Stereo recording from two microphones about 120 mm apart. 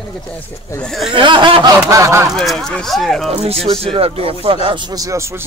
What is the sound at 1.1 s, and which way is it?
Speech, 40° right (ahead or behind).